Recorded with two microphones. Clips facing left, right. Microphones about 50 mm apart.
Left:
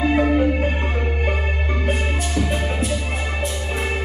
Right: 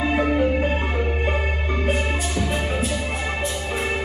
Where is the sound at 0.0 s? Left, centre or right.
Centre.